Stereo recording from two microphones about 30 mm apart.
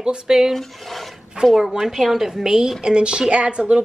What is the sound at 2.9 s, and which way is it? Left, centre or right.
Speech, right.